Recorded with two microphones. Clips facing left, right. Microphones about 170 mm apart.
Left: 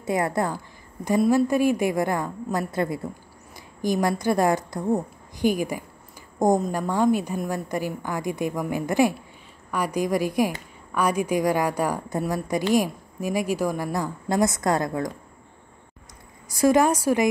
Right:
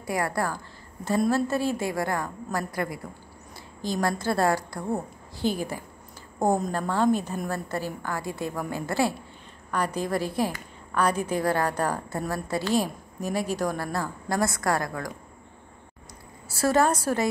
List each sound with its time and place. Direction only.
0.0 s a woman's voice: 20° left (ahead or behind)
16.5 s a woman's voice: 15° left (ahead or behind)